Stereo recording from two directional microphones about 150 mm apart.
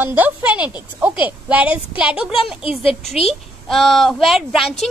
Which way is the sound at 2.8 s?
40° left (ahead or behind).